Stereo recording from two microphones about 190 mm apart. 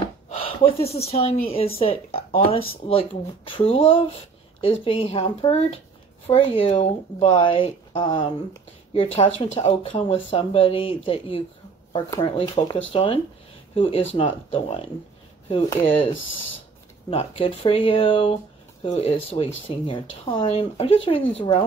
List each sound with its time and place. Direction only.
0.3 s speech: 30° left (ahead or behind)
11.9 s speech: 15° left (ahead or behind)
12.4 s speech: 30° left (ahead or behind)
17.1 s speech: 30° left (ahead or behind)
20.5 s speech: 30° left (ahead or behind)